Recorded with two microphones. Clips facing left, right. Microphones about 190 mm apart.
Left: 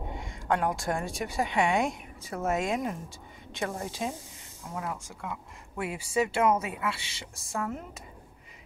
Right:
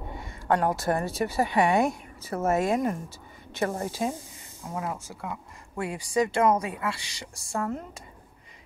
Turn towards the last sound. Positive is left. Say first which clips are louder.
# right 3 dB
turn(degrees=0)  # may be behind; listen again after turning